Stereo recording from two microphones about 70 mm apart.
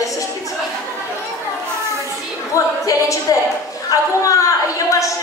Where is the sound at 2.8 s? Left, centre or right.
Left.